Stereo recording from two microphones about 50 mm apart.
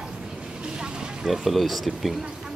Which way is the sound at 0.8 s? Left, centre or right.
Centre.